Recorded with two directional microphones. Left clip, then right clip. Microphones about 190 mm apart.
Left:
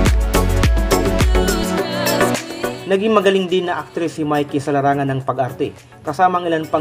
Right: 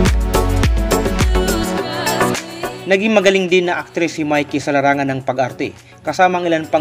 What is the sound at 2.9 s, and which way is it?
Speech, 15° right (ahead or behind).